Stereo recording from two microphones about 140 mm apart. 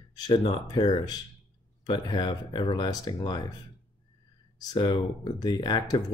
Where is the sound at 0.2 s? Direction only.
30° left (ahead or behind).